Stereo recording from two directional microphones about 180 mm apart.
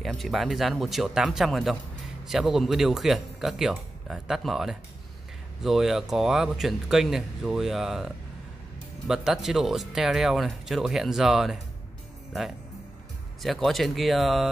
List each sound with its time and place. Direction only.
0.0 s speech: centre (ahead or behind)